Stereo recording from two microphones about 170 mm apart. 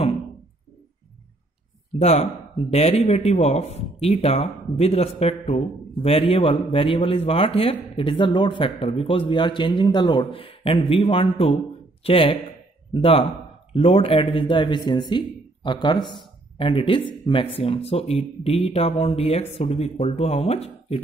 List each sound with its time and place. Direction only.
2.0 s a man's voice: 40° left (ahead or behind)